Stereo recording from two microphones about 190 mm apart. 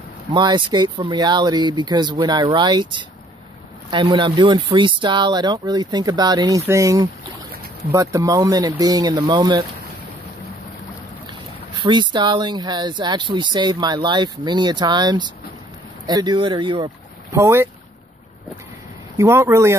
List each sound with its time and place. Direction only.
0.3 s speech: 25° right (ahead or behind)
11.7 s speech: 25° right (ahead or behind)
19.1 s speech: 15° right (ahead or behind)